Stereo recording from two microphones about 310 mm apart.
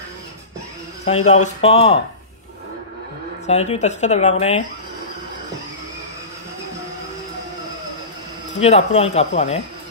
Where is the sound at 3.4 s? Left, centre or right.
Left.